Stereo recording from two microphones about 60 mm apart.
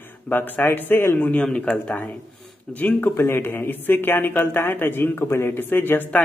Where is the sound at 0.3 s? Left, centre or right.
Left.